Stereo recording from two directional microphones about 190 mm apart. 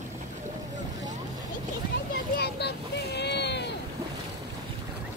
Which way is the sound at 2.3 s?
60° left (ahead or behind).